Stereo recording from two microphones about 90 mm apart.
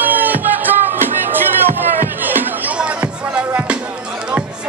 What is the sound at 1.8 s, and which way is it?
Music, 20° right (ahead or behind).